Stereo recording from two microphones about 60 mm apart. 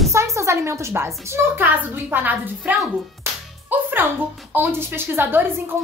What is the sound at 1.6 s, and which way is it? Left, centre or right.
A woman's voice, right.